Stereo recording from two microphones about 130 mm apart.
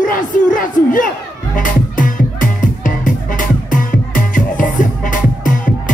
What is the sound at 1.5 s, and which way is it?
Music, 90° left.